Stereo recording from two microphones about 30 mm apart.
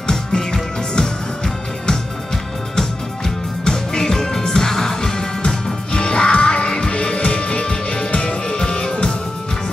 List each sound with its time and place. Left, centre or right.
0.0 s music: left
3.6 s music: left